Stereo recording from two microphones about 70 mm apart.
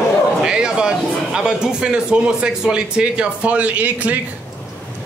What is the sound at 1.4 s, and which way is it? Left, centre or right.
Speech, centre.